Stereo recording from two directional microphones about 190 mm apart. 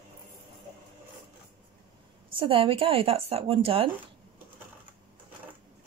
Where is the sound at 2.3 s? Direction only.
30° right (ahead or behind).